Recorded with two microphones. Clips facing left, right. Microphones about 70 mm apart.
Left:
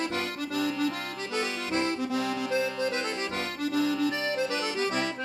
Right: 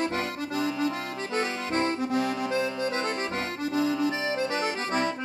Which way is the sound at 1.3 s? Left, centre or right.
Right.